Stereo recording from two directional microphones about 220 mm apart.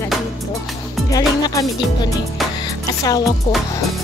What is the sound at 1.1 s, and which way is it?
Music, 15° left (ahead or behind).